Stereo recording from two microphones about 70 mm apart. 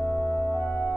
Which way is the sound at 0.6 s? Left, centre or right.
Left.